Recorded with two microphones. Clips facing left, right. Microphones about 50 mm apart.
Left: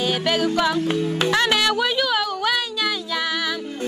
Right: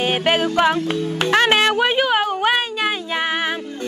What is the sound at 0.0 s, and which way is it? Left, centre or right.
Music, right.